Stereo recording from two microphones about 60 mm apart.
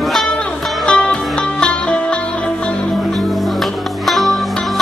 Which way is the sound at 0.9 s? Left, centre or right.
Centre.